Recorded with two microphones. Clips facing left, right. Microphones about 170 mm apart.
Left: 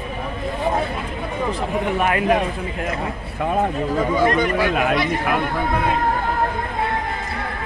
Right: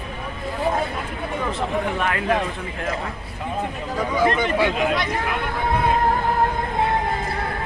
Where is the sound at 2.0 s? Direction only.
15° left (ahead or behind).